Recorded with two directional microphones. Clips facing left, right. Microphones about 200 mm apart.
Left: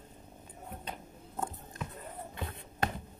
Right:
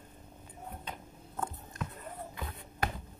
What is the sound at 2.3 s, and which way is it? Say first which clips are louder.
Basketball bounce: left 2 dB; 25° left (ahead or behind).